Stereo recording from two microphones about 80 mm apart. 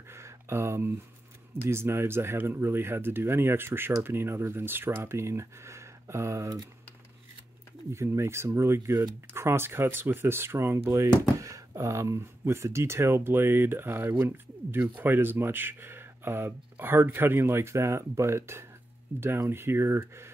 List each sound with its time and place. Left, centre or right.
0.1 s a sound: right
1.6 s speech: right
7.9 s speech: right